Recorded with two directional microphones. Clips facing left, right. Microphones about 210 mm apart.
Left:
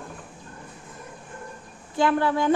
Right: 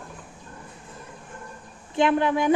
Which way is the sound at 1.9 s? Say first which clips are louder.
Right 1 dB; 20° right (ahead or behind).